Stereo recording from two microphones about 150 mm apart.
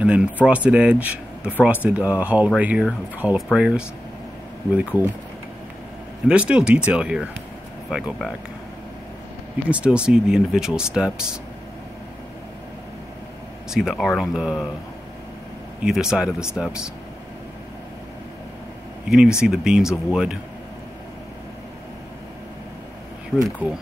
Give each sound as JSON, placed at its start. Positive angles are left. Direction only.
{"t": 0.0, "sound": "speech", "side_deg": -5}
{"t": 6.2, "sound": "speech", "side_deg": -5}
{"t": 9.7, "sound": "speech", "side_deg": -5}
{"t": 13.7, "sound": "speech", "side_deg": -5}
{"t": 15.8, "sound": "speech", "side_deg": -5}
{"t": 19.0, "sound": "speech", "side_deg": -5}
{"t": 23.3, "sound": "speech", "side_deg": 0}